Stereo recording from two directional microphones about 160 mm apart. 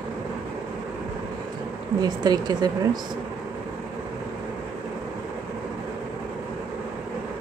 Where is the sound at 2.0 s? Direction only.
25° right (ahead or behind).